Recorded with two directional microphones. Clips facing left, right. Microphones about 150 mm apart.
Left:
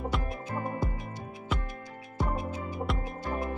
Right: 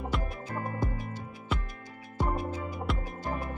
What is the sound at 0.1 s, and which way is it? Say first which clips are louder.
Music: right 2 dB; centre (ahead or behind).